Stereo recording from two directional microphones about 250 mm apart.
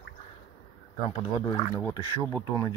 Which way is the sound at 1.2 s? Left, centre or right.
Centre.